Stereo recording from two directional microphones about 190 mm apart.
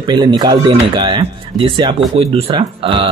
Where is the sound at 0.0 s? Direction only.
25° right (ahead or behind).